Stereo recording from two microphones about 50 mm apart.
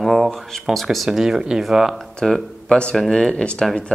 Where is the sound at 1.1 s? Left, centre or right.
Centre.